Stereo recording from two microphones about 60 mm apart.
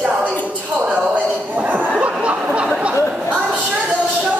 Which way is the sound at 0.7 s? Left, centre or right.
Centre.